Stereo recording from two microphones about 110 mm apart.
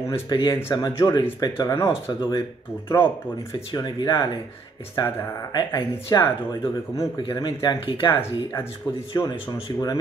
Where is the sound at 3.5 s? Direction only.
40° left (ahead or behind).